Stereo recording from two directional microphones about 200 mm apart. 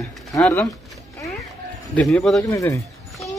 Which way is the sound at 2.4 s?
15° left (ahead or behind).